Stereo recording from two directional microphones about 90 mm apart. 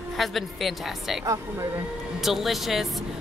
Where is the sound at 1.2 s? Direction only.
40° right (ahead or behind).